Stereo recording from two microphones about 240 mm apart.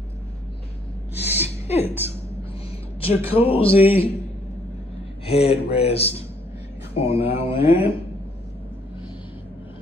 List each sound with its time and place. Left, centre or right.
1.1 s gasp: centre
1.8 s a woman's voice: centre
3.2 s a woman's voice: centre
3.4 s speech: left
3.7 s a woman's voice: centre
5.2 s speech: left
7.6 s a woman's voice: centre